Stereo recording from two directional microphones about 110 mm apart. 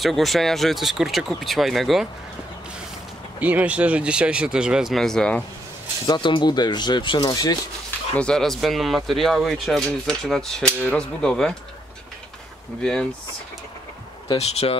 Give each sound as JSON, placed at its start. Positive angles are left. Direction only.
{"t": 0.0, "sound": "speech", "side_deg": 0}
{"t": 3.3, "sound": "speech", "side_deg": -15}
{"t": 6.0, "sound": "speech", "side_deg": 45}
{"t": 8.2, "sound": "speech", "side_deg": 5}
{"t": 12.8, "sound": "speech", "side_deg": 5}
{"t": 14.4, "sound": "speech", "side_deg": 70}